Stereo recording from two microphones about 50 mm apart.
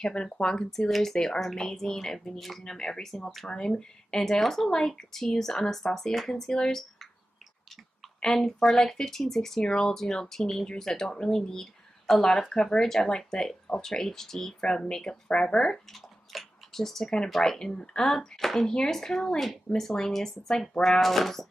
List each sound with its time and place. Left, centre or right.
0.0 s speech: centre
0.7 s speech: centre
3.4 s speech: centre
8.2 s speech: centre
15.9 s speech: centre